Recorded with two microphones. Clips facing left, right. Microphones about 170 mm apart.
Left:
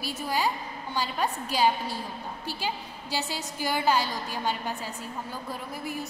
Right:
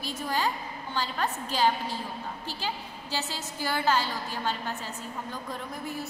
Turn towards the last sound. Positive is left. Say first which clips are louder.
# left 1 dB
turn(degrees=5)  # may be behind; listen again after turning